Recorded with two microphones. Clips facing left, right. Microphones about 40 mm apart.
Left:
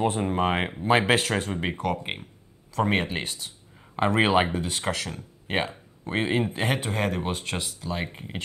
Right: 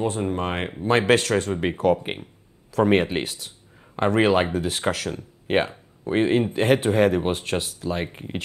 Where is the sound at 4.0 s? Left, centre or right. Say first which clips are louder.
Right 2 dB; centre.